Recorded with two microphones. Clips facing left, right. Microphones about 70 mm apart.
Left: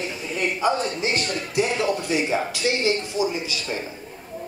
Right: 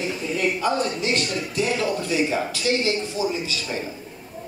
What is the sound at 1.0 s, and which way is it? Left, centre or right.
Speech, left.